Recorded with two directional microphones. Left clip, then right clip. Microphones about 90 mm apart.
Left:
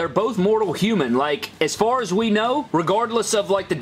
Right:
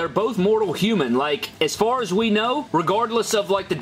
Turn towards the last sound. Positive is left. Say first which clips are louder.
# left 1 dB
turn(degrees=15)  # may be behind; listen again after turning